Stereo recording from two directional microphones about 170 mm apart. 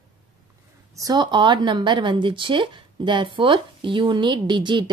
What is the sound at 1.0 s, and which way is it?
A woman's voice, 25° right (ahead or behind).